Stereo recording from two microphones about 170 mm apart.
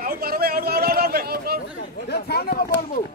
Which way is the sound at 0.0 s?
60° right (ahead or behind).